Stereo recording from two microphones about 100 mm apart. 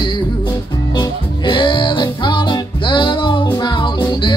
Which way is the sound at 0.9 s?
55° left (ahead or behind).